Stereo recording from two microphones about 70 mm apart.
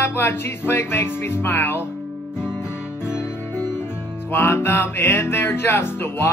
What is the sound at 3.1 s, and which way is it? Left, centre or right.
Music, left.